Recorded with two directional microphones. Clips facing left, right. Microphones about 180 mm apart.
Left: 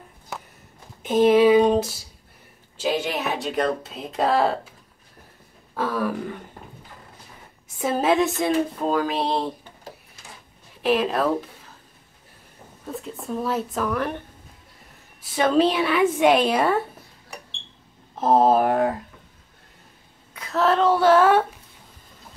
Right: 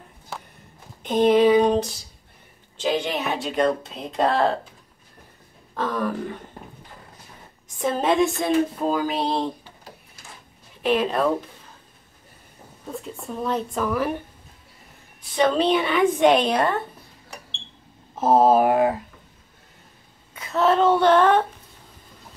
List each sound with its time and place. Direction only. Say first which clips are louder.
1.0 s a sound: left 1 dB; 5° left (ahead or behind)
2.8 s speech: even; 5° left (ahead or behind)
5.8 s throat clearing: even; 10° left (ahead or behind)
7.8 s speech: even; 5° left (ahead or behind)
10.8 s speech: even; centre (ahead or behind)
12.8 s speech: left 1 dB; centre (ahead or behind)
15.3 s speech: even; 5° left (ahead or behind)
18.1 s speech: right 1 dB; 5° right (ahead or behind)
20.3 s speech: right 1 dB; centre (ahead or behind)